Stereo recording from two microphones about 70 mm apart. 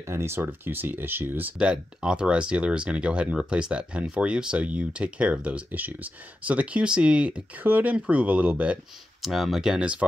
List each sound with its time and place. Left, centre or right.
0.0 s speech: right
1.6 s speech: centre
9.2 s speech: centre